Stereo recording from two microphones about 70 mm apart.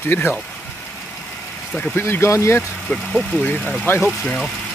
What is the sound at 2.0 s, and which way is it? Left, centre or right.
Speech, left.